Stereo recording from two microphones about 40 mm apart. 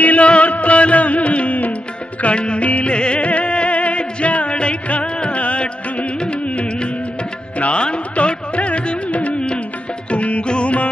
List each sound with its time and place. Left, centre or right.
0.0 s music: left